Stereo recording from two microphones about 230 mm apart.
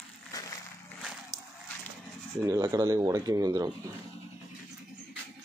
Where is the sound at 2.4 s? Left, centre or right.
Centre.